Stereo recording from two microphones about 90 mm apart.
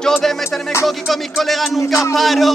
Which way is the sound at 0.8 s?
Centre (ahead or behind).